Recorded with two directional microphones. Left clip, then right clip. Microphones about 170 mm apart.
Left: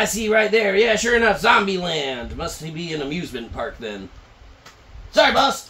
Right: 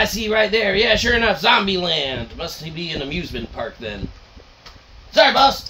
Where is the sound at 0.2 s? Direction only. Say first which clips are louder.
Left 4 dB; 25° right (ahead or behind).